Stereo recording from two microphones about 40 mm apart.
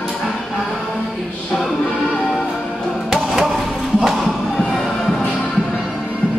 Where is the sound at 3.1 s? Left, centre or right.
Centre.